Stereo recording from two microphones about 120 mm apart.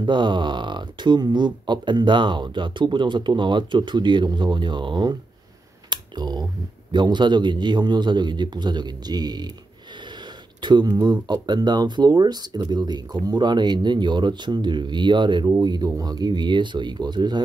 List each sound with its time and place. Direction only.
0.0 s speech: 40° right (ahead or behind)
5.9 s a sound: 35° right (ahead or behind)
6.9 s speech: 40° right (ahead or behind)
10.6 s speech: 35° right (ahead or behind)